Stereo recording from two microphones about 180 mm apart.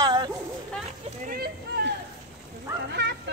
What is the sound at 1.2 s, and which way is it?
Speech, 55° right (ahead or behind).